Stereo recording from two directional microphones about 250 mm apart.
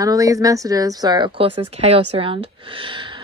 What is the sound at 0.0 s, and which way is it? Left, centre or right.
A woman's voice, centre.